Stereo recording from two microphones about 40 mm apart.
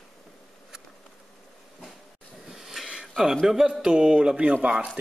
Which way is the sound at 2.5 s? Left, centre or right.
Centre.